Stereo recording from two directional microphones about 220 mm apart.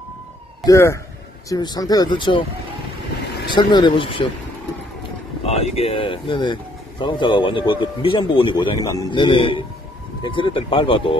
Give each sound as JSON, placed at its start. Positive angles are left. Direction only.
{"t": 0.7, "sound": "speech", "side_deg": 15}
{"t": 3.4, "sound": "speech", "side_deg": 20}
{"t": 5.4, "sound": "speech", "side_deg": 30}